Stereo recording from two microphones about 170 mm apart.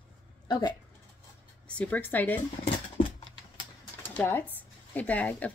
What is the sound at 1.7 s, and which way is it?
Speech, 10° left (ahead or behind).